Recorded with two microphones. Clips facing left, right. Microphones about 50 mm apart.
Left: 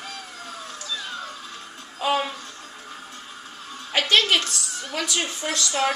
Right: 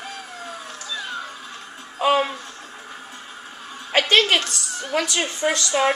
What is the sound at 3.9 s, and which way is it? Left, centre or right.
Music, centre.